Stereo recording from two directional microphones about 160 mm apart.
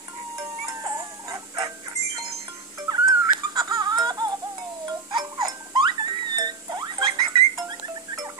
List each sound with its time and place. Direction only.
0.7 s chicken: 20° right (ahead or behind)
2.9 s music: 25° right (ahead or behind)